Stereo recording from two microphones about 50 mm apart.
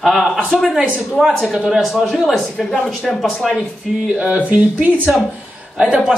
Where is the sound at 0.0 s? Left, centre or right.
Centre.